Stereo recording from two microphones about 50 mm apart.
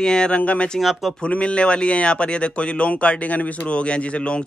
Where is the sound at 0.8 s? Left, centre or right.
Centre.